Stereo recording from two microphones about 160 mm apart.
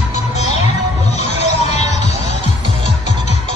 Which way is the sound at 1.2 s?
45° left (ahead or behind).